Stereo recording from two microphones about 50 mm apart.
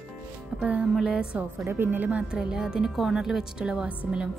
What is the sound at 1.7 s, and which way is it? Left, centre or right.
Speech, right.